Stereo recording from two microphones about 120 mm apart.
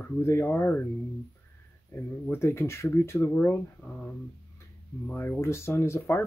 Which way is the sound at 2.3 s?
20° left (ahead or behind).